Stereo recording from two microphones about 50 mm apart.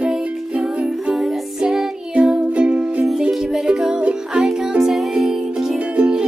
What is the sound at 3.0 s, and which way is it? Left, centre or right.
Music, centre.